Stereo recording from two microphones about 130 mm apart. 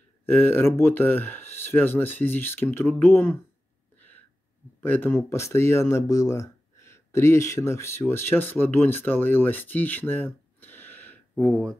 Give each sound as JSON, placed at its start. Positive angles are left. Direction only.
{"t": 0.3, "sound": "speech", "side_deg": 15}
{"t": 4.8, "sound": "speech", "side_deg": 15}